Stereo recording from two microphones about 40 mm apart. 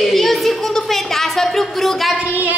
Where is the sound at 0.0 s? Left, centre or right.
Centre.